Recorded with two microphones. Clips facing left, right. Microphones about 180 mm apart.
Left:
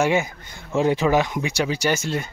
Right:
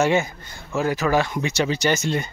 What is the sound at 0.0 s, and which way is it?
Speech, 15° left (ahead or behind).